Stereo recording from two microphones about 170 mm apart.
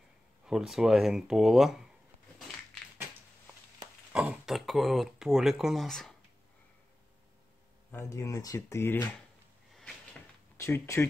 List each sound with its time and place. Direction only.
0.5 s speech: centre (ahead or behind)
4.1 s speech: 5° right (ahead or behind)
7.9 s speech: 15° left (ahead or behind)
10.6 s speech: 15° left (ahead or behind)